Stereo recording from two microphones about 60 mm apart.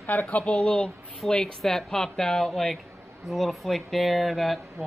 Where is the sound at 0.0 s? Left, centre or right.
Left; by 0.9 s centre.